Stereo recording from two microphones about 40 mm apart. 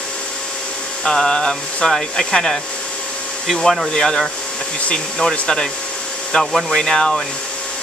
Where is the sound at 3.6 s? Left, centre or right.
Centre.